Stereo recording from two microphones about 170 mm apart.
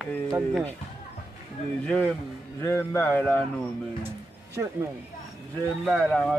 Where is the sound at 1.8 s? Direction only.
5° left (ahead or behind).